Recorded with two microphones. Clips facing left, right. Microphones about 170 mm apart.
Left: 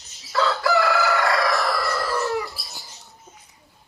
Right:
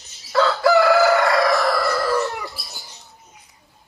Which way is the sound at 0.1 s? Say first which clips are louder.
Right 4 dB; centre (ahead or behind).